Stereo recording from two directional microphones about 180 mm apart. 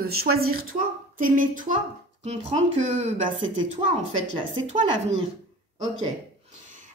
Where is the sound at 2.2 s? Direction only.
35° right (ahead or behind).